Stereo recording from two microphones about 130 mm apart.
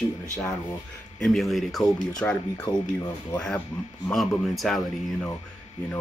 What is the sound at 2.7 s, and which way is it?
Speech, 30° left (ahead or behind).